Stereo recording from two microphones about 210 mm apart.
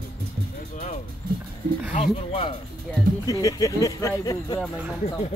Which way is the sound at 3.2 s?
15° left (ahead or behind).